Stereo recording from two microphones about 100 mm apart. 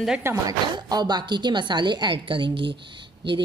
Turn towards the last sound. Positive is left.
turn(degrees=-55)  # may be behind; listen again after turning